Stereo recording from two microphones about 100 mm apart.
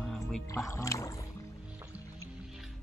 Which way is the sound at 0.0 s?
5° left (ahead or behind).